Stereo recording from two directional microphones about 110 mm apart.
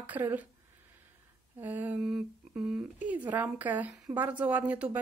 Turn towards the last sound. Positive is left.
turn(degrees=-15)  # may be behind; listen again after turning